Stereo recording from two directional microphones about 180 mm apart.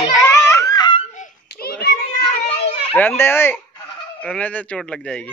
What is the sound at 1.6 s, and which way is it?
Children playing, 60° left (ahead or behind).